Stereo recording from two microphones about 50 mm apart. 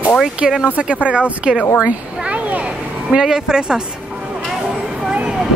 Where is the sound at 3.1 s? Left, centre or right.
Centre.